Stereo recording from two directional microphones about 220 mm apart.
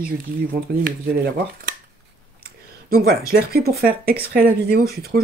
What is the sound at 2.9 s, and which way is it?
Speech, 45° right (ahead or behind).